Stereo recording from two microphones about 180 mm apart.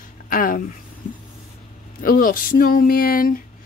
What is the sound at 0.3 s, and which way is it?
Speech, 50° left (ahead or behind).